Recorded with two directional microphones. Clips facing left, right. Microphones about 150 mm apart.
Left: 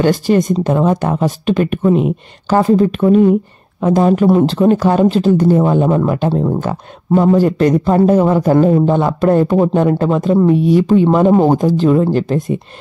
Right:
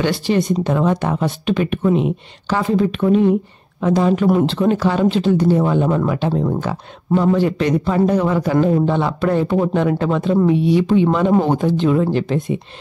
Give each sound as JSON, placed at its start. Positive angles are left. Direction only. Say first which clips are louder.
{"t": 0.0, "sound": "a woman's voice", "louder": "left 5 dB", "side_deg": 45}